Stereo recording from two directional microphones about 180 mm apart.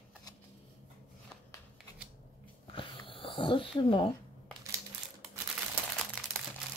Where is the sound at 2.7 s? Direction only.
30° left (ahead or behind).